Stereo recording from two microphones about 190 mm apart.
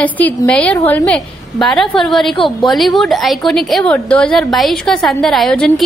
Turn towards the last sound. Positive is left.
turn(degrees=5)  # may be behind; listen again after turning